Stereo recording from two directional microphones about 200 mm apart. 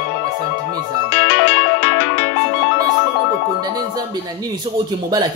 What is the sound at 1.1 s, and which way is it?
Music, 55° left (ahead or behind).